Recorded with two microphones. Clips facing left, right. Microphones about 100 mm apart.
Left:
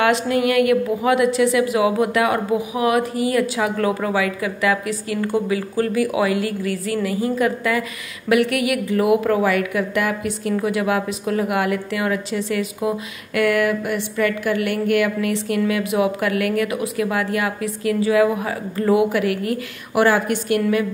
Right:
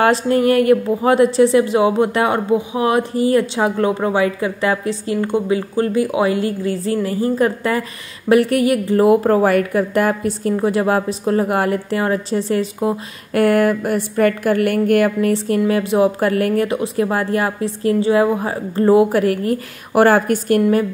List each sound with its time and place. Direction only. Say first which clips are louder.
0.0 s a woman's voice: right 3 dB; 40° right (ahead or behind)